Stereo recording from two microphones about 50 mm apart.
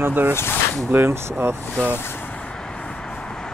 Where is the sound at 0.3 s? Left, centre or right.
Left.